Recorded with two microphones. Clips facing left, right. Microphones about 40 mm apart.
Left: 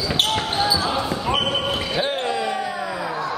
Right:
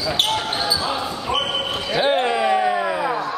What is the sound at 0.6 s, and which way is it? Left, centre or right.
Basketball bounce, centre.